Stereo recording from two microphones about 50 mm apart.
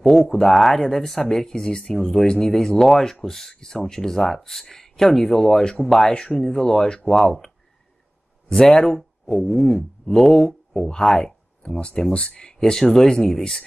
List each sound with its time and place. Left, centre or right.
0.0 s speech: centre
6.1 s speech: centre